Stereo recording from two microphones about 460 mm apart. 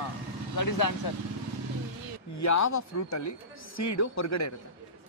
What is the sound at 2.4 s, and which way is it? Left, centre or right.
Speech, left.